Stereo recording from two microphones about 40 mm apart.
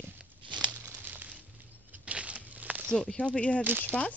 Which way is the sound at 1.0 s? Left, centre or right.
Right.